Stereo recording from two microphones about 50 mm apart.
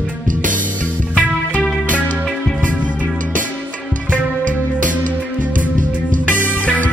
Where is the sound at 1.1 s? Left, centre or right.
Left.